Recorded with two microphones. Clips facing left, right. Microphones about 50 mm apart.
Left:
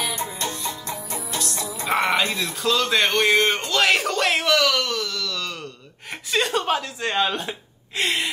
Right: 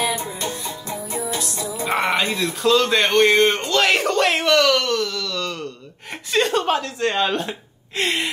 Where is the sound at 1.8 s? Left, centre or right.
Centre.